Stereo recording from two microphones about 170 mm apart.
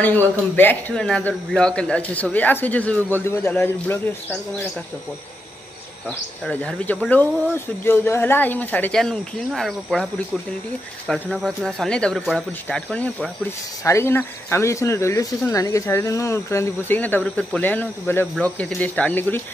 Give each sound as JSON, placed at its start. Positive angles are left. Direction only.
{"t": 0.0, "sound": "speech", "side_deg": 10}
{"t": 6.0, "sound": "speech", "side_deg": 10}
{"t": 11.1, "sound": "speech", "side_deg": 0}